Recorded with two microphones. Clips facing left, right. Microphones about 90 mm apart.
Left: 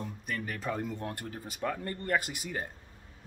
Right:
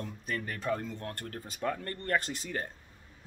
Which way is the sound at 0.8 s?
15° left (ahead or behind).